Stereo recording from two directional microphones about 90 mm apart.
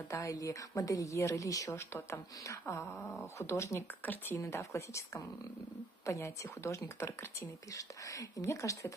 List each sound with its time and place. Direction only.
0.1 s a woman's voice: 35° left (ahead or behind)
4.0 s speech: 20° left (ahead or behind)
4.4 s a woman's voice: 35° left (ahead or behind)